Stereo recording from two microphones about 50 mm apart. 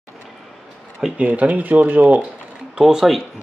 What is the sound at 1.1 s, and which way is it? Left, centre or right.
Speech, right.